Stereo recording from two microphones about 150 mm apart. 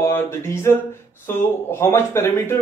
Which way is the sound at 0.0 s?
15° left (ahead or behind).